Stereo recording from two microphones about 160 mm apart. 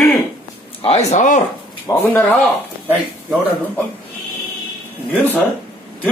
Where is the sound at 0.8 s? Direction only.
40° left (ahead or behind).